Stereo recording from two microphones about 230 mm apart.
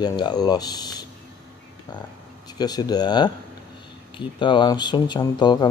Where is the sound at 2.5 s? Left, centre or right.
Centre.